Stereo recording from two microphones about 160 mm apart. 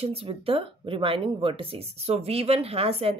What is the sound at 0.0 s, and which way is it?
Speech, 35° right (ahead or behind).